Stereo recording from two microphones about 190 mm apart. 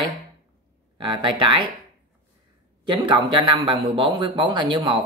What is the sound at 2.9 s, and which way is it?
Speech, 25° right (ahead or behind).